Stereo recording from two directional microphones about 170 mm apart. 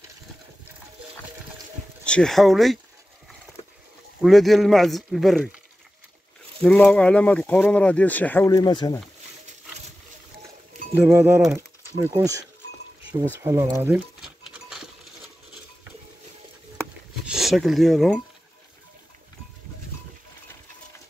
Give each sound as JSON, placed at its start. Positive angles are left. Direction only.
{"t": 2.0, "sound": "speech", "side_deg": 5}
{"t": 4.2, "sound": "speech", "side_deg": 0}
{"t": 6.6, "sound": "speech", "side_deg": 5}
{"t": 8.5, "sound": "speech", "side_deg": 25}
{"t": 11.0, "sound": "speech", "side_deg": -15}
{"t": 13.4, "sound": "a sound", "side_deg": -15}
{"t": 17.3, "sound": "speech", "side_deg": 0}